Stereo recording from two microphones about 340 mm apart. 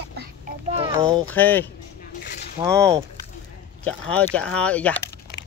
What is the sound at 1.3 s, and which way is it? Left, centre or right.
Speech, centre.